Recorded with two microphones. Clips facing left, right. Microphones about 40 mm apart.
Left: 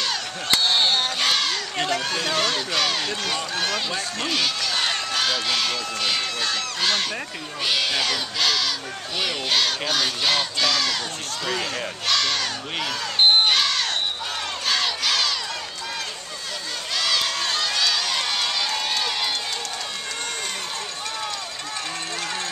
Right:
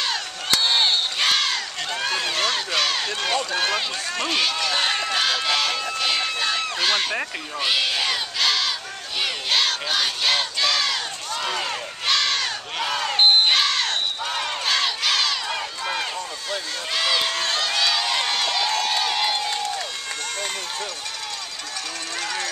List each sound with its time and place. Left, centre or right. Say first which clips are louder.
0.7 s crowd: even; centre
1.9 s speech: right 1 dB; centre
3.5 s speech: right 2 dB; centre
4.3 s run: right 2 dB; centre
7.6 s speech: even; centre
9.2 s crowd: right 1 dB; centre
12.1 s crowd: right 1 dB; centre
16.9 s run: right 1 dB; centre